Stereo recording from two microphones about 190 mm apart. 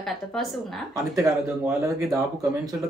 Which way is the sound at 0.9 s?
15° right (ahead or behind).